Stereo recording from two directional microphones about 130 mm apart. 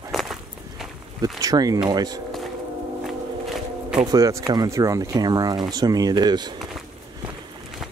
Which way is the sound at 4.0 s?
30° right (ahead or behind).